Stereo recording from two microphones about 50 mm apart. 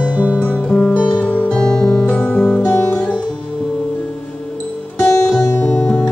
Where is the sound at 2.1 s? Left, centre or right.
Left.